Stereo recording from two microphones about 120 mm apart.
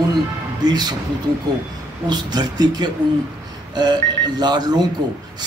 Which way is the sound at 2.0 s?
35° right (ahead or behind).